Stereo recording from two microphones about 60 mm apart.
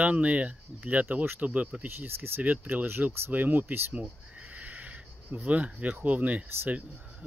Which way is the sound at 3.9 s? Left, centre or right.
Right.